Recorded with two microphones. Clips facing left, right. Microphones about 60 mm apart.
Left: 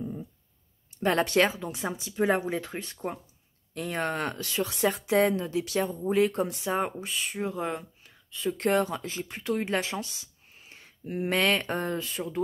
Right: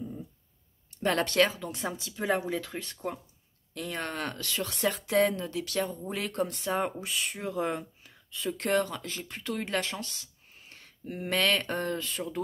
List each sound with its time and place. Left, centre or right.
0.9 s speech: centre
5.9 s speech: centre
8.7 s speech: centre